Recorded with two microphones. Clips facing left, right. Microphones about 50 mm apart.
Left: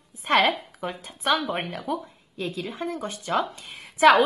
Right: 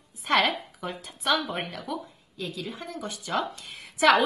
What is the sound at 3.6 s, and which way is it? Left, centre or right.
Speech, centre.